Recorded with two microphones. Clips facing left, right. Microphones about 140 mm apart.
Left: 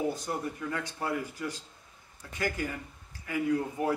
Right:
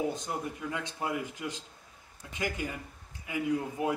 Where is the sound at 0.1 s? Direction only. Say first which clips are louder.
Left 1 dB; 20° right (ahead or behind).